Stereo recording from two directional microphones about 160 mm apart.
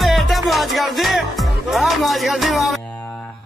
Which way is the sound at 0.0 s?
Centre (ahead or behind).